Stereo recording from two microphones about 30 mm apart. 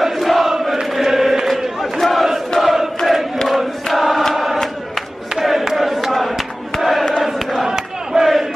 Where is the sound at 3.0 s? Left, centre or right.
Centre.